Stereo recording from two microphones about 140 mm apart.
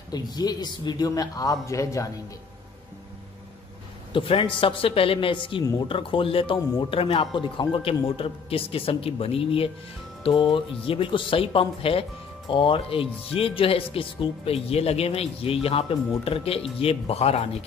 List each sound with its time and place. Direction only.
0.1 s a man's voice: 30° left (ahead or behind)
4.1 s a woman's voice: 40° left (ahead or behind)